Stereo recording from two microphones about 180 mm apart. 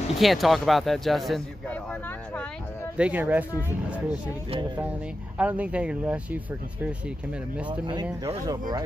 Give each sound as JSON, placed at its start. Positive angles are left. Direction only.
{"t": 0.2, "sound": "a man's voice", "side_deg": 0}
{"t": 3.0, "sound": "speech", "side_deg": -10}
{"t": 5.4, "sound": "speech", "side_deg": -5}
{"t": 7.7, "sound": "speech", "side_deg": -25}